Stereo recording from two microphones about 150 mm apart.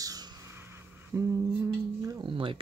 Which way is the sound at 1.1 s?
20° right (ahead or behind).